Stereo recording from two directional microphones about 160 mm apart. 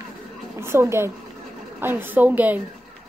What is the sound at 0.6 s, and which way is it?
A woman's voice, 15° right (ahead or behind).